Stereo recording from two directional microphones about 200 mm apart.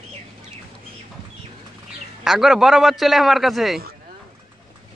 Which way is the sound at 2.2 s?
Centre (ahead or behind).